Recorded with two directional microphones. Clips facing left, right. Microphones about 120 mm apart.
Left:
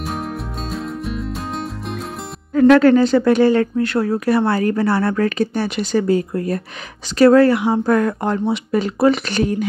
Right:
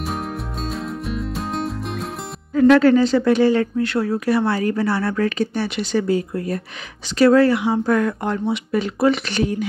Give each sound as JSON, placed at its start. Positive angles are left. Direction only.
{"t": 0.0, "sound": "music", "side_deg": 0}
{"t": 2.5, "sound": "speech", "side_deg": 55}